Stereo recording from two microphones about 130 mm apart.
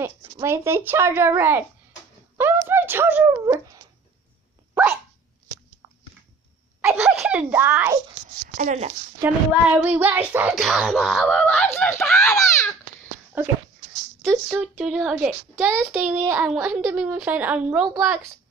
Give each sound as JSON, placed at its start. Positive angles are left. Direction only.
{"t": 0.0, "sound": "a woman's voice", "side_deg": -20}
{"t": 2.3, "sound": "a sound", "side_deg": -15}
{"t": 2.7, "sound": "speech", "side_deg": -15}
{"t": 6.8, "sound": "speech", "side_deg": -5}
{"t": 9.2, "sound": "a woman's voice", "side_deg": -15}
{"t": 10.5, "sound": "a child's voice", "side_deg": -5}
{"t": 11.3, "sound": "speech", "side_deg": 10}
{"t": 13.4, "sound": "a woman's voice", "side_deg": -15}
{"t": 14.2, "sound": "a child's voice", "side_deg": 0}